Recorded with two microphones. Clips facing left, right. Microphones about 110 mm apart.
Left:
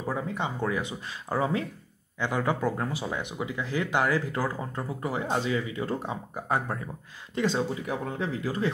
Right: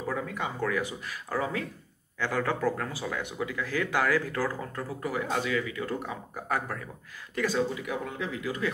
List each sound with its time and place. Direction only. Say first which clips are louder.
0.0 s speech: left 2 dB; 25° left (ahead or behind)